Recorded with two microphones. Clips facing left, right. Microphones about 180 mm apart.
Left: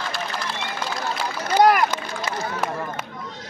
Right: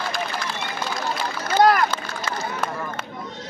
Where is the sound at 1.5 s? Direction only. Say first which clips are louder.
Left 1 dB; 15° left (ahead or behind).